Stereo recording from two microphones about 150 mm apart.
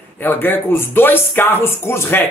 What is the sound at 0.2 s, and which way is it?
Speech, 15° left (ahead or behind).